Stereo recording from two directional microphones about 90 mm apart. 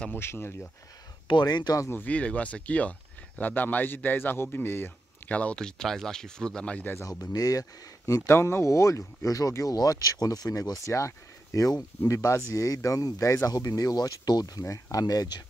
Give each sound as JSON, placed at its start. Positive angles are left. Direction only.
{"t": 0.1, "sound": "speech", "side_deg": 25}
{"t": 1.4, "sound": "speech", "side_deg": 50}
{"t": 1.8, "sound": "speech", "side_deg": 25}
{"t": 7.0, "sound": "speech", "side_deg": 40}
{"t": 8.3, "sound": "speech", "side_deg": 30}